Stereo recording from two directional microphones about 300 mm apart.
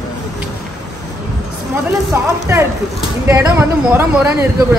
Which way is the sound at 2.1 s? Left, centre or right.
Centre.